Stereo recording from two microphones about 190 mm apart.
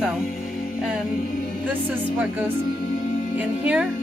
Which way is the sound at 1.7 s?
10° right (ahead or behind).